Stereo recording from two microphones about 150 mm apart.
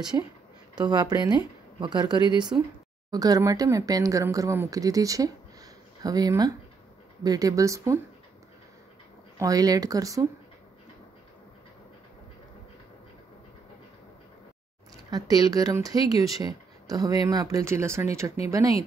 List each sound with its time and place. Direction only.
0.7 s speech: 25° right (ahead or behind)
9.4 s speech: 25° right (ahead or behind)
15.0 s speech: 25° right (ahead or behind)